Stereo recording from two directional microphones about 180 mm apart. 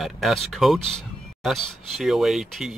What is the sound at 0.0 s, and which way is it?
Speech, centre (ahead or behind).